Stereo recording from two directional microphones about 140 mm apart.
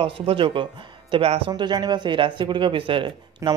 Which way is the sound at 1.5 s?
30° right (ahead or behind).